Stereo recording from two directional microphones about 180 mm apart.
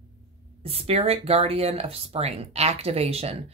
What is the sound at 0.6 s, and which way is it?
Speech, 35° right (ahead or behind).